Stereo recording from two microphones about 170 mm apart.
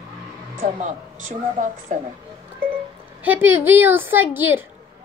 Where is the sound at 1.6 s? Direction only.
50° right (ahead or behind).